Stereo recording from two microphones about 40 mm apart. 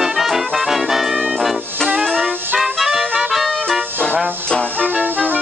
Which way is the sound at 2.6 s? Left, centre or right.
Centre.